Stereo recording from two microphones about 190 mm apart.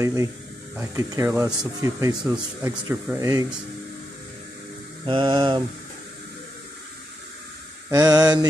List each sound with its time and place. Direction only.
0.0 s speech: 15° right (ahead or behind)
5.0 s mantra: 25° right (ahead or behind)
7.9 s mantra: 20° right (ahead or behind)